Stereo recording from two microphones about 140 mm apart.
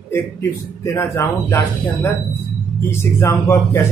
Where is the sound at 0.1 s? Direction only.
20° left (ahead or behind).